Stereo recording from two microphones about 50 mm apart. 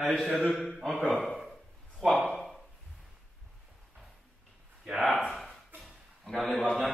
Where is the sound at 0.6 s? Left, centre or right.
Centre.